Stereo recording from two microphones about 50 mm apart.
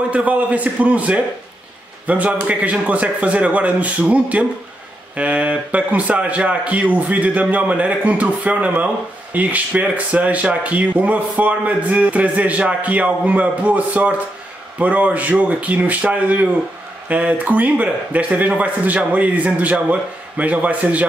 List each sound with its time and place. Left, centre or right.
0.1 s a man's voice: right